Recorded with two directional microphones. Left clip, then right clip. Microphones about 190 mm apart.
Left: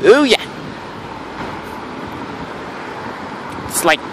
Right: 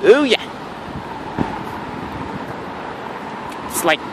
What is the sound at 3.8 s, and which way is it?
Speech, 20° left (ahead or behind).